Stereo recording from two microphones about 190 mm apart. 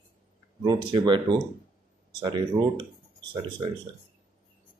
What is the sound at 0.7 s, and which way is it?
Speech, 25° right (ahead or behind).